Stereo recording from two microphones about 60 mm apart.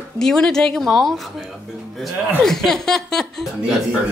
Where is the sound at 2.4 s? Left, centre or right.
Centre.